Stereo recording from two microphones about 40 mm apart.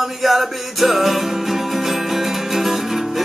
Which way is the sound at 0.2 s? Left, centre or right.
Centre.